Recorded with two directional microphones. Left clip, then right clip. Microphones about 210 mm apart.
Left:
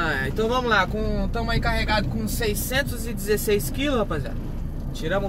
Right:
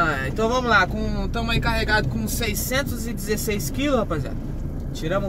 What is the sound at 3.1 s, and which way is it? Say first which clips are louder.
Speech: left 5 dB; 10° right (ahead or behind).